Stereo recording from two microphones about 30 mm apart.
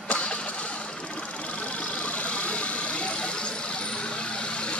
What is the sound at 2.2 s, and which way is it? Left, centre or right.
Vehicle, left.